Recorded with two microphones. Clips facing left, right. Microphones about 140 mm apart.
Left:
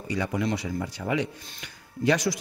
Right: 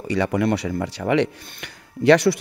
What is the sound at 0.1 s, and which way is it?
Speech, 70° right (ahead or behind).